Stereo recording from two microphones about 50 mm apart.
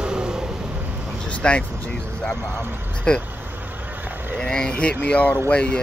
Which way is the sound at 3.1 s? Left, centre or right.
Centre.